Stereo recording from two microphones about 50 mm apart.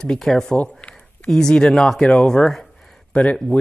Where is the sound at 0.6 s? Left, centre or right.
Left.